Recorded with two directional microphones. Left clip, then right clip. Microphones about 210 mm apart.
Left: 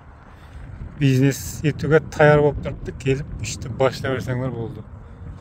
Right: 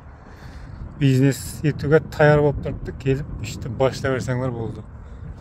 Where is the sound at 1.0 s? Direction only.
5° left (ahead or behind).